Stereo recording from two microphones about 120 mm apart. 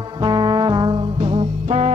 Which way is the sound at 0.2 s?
40° right (ahead or behind).